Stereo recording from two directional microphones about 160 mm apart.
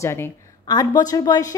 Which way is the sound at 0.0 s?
15° left (ahead or behind).